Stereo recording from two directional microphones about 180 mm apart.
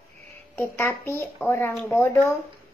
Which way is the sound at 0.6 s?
15° left (ahead or behind).